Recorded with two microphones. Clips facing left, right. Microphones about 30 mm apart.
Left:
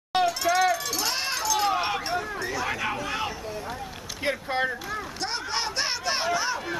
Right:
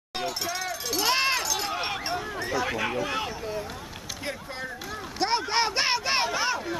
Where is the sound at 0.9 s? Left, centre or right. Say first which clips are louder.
Right 4 dB; centre.